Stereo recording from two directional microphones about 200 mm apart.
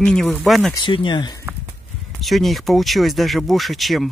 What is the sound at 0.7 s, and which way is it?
Speech, 25° left (ahead or behind).